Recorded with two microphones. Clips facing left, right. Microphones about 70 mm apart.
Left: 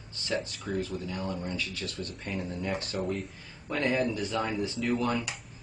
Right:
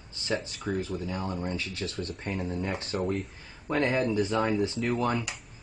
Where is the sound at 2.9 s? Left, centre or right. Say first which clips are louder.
Right 2 dB; right.